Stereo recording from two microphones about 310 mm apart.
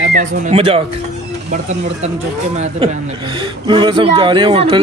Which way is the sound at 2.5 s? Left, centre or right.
Centre.